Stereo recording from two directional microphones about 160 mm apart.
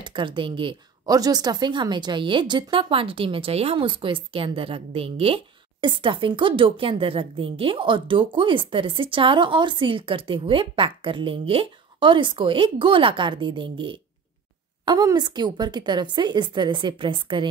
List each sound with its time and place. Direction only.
0.0 s a woman's voice: 30° right (ahead or behind)